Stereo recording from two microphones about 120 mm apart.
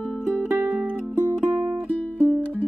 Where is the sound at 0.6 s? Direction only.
10° right (ahead or behind).